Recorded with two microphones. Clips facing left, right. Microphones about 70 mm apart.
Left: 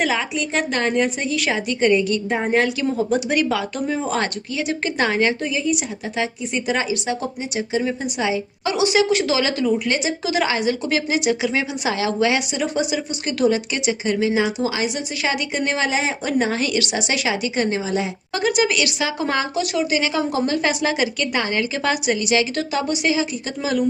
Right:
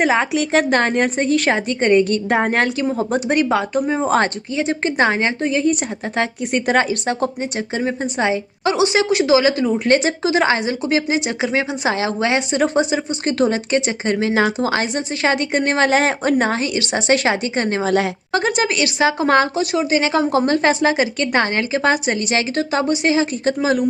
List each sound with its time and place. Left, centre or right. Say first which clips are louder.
0.2 s a woman's voice: right 6 dB; right
2.3 s a woman's voice: right 2 dB; right
3.0 s speech: right 1 dB; right
5.5 s speech: right 4 dB; right
9.8 s a woman's voice: right 6 dB; right
10.2 s a woman's voice: right 3 dB; right
16.5 s a woman's voice: even; right
16.9 s a woman's voice: right 5 dB; right